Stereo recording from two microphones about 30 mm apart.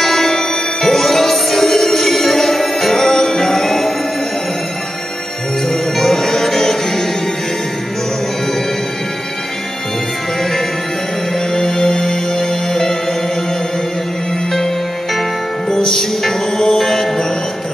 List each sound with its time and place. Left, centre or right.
0.0 s music: centre
5.7 s music: centre
11.5 s music: left
15.7 s music: centre